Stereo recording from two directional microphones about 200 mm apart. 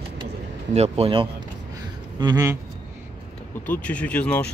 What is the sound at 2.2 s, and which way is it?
Speech, 15° right (ahead or behind).